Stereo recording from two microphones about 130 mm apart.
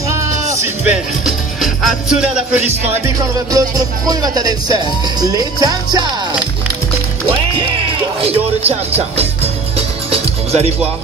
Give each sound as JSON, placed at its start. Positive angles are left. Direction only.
{"t": 0.8, "sound": "music", "side_deg": 0}
{"t": 3.2, "sound": "music", "side_deg": -30}
{"t": 8.2, "sound": "speech", "side_deg": -50}
{"t": 9.8, "sound": "music", "side_deg": -50}